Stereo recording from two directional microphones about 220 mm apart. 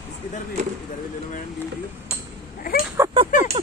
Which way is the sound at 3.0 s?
10° right (ahead or behind).